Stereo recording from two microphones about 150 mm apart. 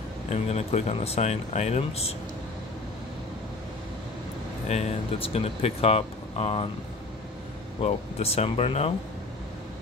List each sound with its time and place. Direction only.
0.3 s speech: 45° left (ahead or behind)
4.6 s speech: 45° left (ahead or behind)
7.8 s speech: 45° left (ahead or behind)